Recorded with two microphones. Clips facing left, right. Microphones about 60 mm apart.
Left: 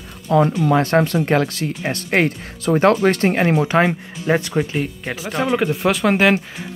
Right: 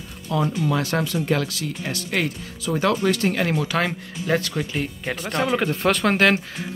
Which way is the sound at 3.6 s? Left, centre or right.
Left.